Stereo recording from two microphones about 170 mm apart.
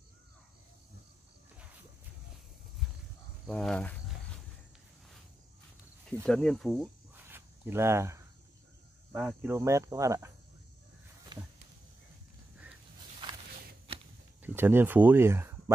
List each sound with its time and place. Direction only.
2.8 s wild animals: centre (ahead or behind)
3.4 s speech: 5° left (ahead or behind)
6.2 s speech: 5° left (ahead or behind)
7.2 s a sound: 15° right (ahead or behind)
9.1 s speech: 10° right (ahead or behind); by 11.5 s 25° right (ahead or behind)
14.4 s speech: 15° right (ahead or behind)